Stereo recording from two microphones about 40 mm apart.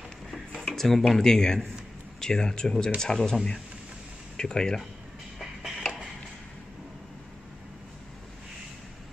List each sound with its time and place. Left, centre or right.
0.7 s speech: centre
4.4 s speech: centre
5.4 s music: centre